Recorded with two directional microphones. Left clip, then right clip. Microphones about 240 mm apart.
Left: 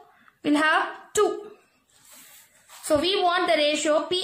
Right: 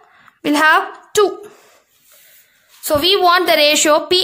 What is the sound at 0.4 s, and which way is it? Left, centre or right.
Speech, right.